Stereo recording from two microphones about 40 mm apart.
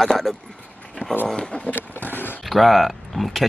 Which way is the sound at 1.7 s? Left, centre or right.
Left.